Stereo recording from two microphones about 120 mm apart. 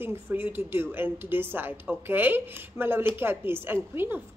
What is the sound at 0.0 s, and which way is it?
A woman's voice, 15° right (ahead or behind).